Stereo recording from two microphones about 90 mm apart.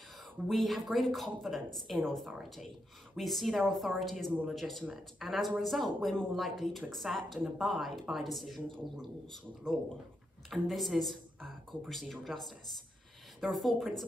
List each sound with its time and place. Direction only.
0.5 s a woman's voice: centre (ahead or behind)